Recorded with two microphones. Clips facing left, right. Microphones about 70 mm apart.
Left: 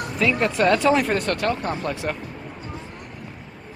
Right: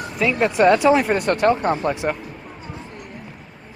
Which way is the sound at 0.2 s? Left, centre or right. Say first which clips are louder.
Right 3 dB; centre.